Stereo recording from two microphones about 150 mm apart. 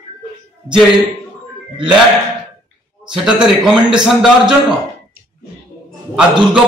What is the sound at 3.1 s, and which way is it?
A man's voice, 5° right (ahead or behind).